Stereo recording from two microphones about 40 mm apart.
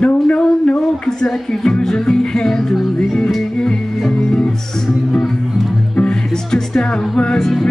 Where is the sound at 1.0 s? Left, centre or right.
Centre.